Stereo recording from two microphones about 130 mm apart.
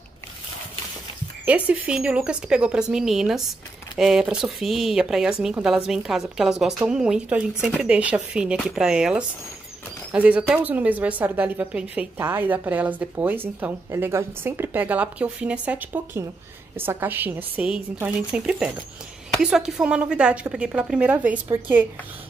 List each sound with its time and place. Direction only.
1.4 s a woman's voice: 10° right (ahead or behind)